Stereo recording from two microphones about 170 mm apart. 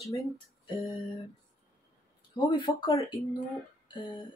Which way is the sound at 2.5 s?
25° left (ahead or behind).